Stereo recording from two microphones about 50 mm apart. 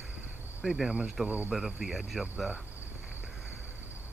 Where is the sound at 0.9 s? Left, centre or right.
Right.